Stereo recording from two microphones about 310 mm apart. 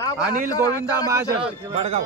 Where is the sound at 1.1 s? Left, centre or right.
Centre.